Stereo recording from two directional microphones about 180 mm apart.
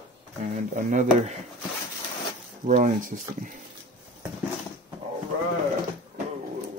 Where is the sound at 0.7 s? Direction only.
45° right (ahead or behind).